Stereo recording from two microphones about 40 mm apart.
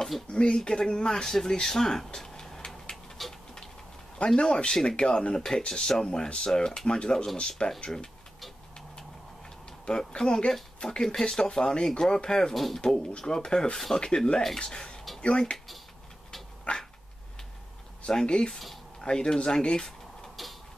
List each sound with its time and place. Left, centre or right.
0.3 s speech: left; by 2.0 s centre
2.1 s a sound: centre
3.2 s dog: centre
4.4 s speech: left
9.8 s speech: centre
12.5 s speech: centre
12.8 s speech: left
16.7 s dog: left
18.2 s speech: left